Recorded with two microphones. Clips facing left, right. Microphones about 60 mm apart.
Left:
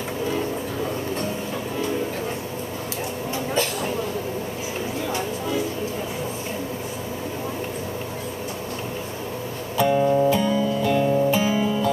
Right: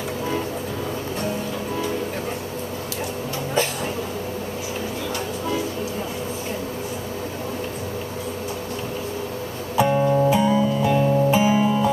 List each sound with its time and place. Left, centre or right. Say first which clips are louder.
9.8 s music: even; centre